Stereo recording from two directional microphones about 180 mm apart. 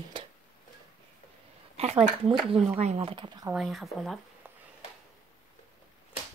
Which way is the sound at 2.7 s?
35° right (ahead or behind).